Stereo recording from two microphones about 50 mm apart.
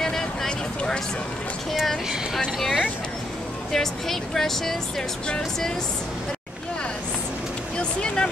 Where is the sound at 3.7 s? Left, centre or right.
Centre.